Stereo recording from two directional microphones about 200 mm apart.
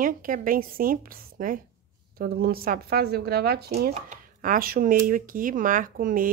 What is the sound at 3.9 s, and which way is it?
Speech, 40° right (ahead or behind).